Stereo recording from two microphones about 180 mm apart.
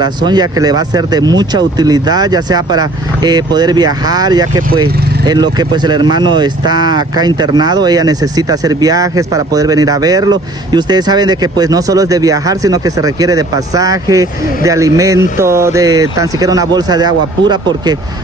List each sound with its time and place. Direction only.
0.0 s speech: 25° right (ahead or behind)
4.9 s vehicle: 60° right (ahead or behind)
5.2 s speech: 25° right (ahead or behind)